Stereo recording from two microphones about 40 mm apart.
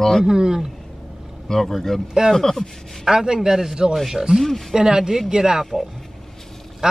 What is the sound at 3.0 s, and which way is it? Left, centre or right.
Speech, centre.